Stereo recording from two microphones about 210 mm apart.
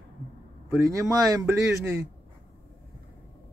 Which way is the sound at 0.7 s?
15° right (ahead or behind).